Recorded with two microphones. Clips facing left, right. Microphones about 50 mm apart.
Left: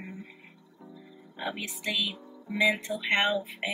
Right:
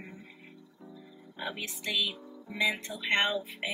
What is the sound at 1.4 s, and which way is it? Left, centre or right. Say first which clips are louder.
Music: left 2 dB; centre.